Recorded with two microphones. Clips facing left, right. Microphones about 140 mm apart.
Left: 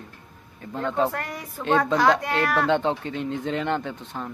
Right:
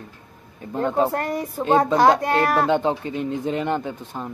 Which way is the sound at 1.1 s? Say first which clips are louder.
Right 8 dB; 40° right (ahead or behind).